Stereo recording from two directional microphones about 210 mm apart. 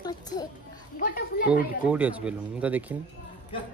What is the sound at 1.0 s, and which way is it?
Speech, 45° left (ahead or behind).